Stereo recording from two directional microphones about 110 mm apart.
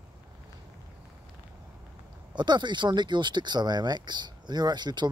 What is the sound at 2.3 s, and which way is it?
Speech, 45° right (ahead or behind).